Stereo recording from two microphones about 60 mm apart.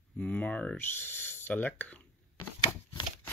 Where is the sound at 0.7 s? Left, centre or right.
Left.